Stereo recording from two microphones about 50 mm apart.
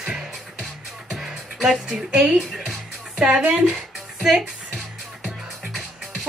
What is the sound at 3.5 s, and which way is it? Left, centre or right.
Music, centre.